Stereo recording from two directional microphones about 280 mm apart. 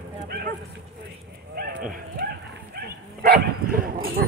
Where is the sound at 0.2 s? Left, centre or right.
Right.